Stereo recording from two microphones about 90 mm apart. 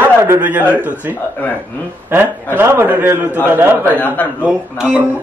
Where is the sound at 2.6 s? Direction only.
25° right (ahead or behind).